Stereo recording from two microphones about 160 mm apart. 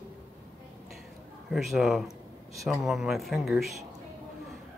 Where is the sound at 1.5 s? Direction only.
Centre (ahead or behind).